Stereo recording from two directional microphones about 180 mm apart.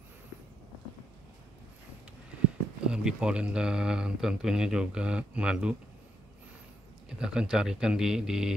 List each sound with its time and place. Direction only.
2.9 s speech: 5° right (ahead or behind)
7.1 s speech: 5° right (ahead or behind)